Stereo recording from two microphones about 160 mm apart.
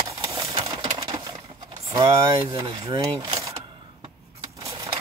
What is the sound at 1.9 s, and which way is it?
Speech, 25° right (ahead or behind).